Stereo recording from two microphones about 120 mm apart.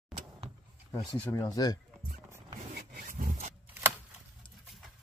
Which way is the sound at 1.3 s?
30° left (ahead or behind).